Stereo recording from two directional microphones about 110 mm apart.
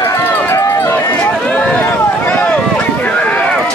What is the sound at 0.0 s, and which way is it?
Run, 30° left (ahead or behind).